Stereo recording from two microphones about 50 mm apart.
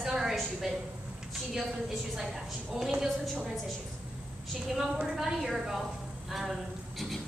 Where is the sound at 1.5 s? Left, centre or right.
Centre.